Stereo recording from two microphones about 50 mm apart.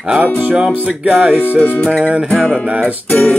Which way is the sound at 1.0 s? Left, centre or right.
Right.